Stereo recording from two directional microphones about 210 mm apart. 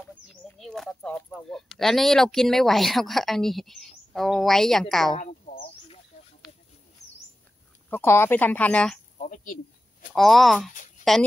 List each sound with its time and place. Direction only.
0.6 s speech: centre (ahead or behind)
5.1 s a sound: 40° left (ahead or behind)
7.9 s speech: 10° left (ahead or behind)
9.2 s speech: 40° left (ahead or behind)
10.1 s speech: centre (ahead or behind)